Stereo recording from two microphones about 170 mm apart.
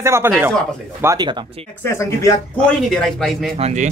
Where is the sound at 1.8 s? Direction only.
15° left (ahead or behind).